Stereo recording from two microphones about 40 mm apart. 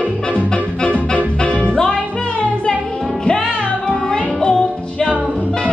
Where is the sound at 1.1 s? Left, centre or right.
Left.